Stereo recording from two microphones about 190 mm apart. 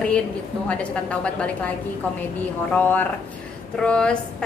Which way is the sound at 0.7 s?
5° left (ahead or behind).